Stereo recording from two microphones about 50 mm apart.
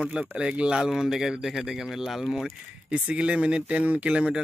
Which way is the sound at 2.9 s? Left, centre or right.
Right.